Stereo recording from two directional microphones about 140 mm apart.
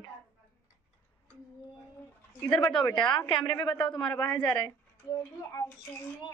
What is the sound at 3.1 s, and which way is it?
Speech, 35° left (ahead or behind).